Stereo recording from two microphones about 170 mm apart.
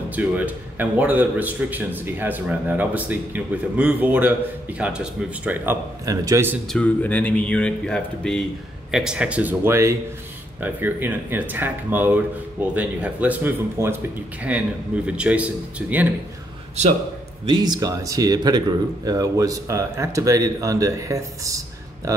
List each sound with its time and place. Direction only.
0.1 s a man's voice: 10° right (ahead or behind)
6.7 s a man's voice: 10° left (ahead or behind); by 16.1 s 10° right (ahead or behind)
17.5 s speech: 25° right (ahead or behind)